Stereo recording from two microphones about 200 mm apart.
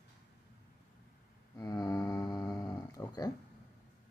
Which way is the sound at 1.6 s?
20° left (ahead or behind).